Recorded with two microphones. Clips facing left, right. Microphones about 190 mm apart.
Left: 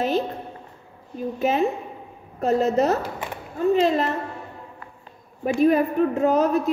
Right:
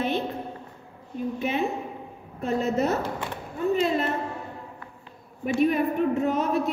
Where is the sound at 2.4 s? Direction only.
40° left (ahead or behind).